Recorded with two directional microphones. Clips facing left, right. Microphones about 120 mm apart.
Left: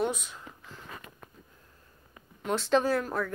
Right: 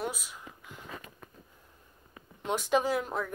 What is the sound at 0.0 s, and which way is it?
Speech, 5° right (ahead or behind).